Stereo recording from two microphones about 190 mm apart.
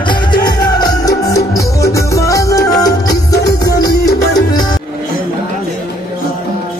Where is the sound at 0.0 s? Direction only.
25° left (ahead or behind).